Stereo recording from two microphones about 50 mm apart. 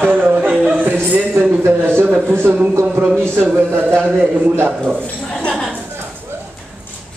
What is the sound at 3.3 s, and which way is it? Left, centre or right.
Speech, right.